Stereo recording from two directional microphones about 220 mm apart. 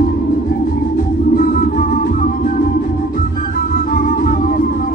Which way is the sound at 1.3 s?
40° left (ahead or behind).